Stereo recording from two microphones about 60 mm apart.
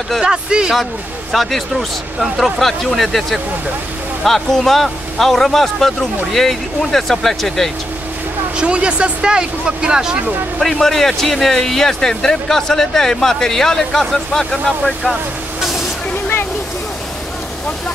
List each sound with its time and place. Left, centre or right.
0.2 s speech: centre
1.3 s speech: centre
8.5 s speech: centre
10.6 s speech: centre